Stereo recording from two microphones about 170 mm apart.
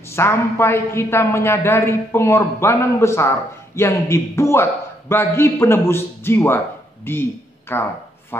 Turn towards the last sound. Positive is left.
turn(degrees=15)  # may be behind; listen again after turning